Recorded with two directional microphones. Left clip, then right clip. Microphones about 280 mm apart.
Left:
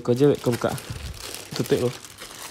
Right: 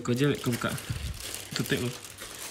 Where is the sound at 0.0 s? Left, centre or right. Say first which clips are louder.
Left 9 dB; centre.